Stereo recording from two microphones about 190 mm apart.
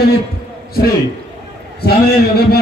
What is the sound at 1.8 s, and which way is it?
Speech, 55° left (ahead or behind).